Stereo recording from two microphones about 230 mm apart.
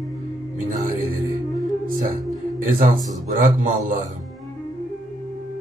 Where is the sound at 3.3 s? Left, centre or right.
Right.